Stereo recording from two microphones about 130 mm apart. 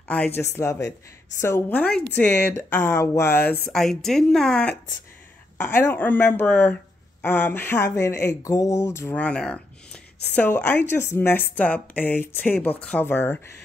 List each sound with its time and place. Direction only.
0.4 s speech: 20° left (ahead or behind)
1.8 s speech: 10° left (ahead or behind)
3.7 s a woman's voice: 5° left (ahead or behind)
5.8 s speech: 15° left (ahead or behind)
9.2 s speech: 10° left (ahead or behind)